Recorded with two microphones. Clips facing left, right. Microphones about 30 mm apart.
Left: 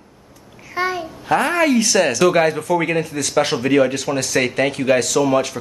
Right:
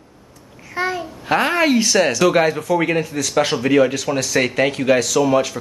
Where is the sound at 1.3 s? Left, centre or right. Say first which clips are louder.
Even; right.